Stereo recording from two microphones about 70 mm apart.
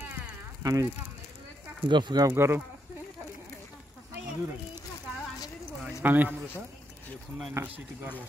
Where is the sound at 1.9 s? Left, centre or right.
Right.